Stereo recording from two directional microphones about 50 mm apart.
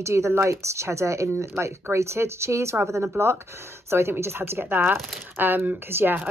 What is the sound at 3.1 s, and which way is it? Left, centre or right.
Speech, right.